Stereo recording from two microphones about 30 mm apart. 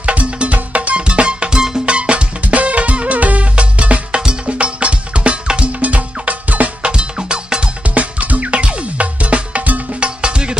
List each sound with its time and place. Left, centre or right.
0.0 s music: right
1.0 s music: right
1.5 s music: right
1.9 s music: right
2.4 s music: right
5.7 s music: right
6.8 s music: right
7.8 s music: right
10.0 s music: right